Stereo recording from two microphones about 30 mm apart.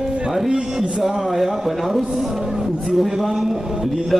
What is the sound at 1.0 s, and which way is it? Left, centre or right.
Speech, centre.